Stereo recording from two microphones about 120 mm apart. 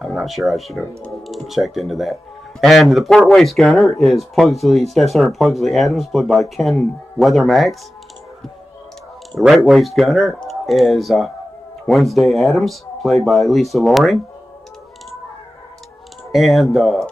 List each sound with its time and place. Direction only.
0.0 s speech: centre (ahead or behind)
9.3 s speech: centre (ahead or behind)
16.3 s speech: centre (ahead or behind)